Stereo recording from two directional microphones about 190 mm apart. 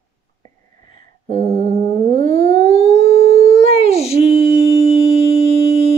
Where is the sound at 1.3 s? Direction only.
40° right (ahead or behind).